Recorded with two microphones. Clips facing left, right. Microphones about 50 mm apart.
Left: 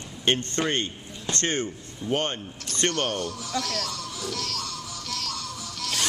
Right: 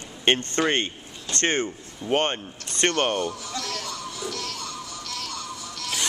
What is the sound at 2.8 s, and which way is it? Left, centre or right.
Speech, centre.